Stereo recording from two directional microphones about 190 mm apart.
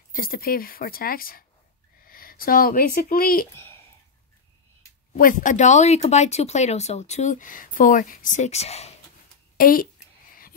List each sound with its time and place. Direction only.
0.1 s speech: 50° left (ahead or behind)
5.1 s speech: 45° left (ahead or behind)
9.6 s speech: 50° left (ahead or behind)